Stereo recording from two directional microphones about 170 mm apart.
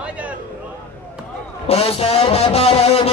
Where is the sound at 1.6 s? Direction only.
35° left (ahead or behind).